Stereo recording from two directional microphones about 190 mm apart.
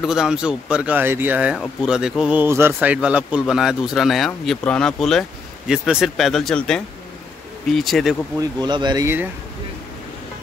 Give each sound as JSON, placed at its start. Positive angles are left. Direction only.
{"t": 0.0, "sound": "speech", "side_deg": -5}
{"t": 8.4, "sound": "speech", "side_deg": -20}